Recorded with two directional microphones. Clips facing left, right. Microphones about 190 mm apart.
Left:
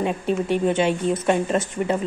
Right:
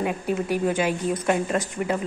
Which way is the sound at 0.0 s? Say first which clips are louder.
Left 2 dB; 25° left (ahead or behind).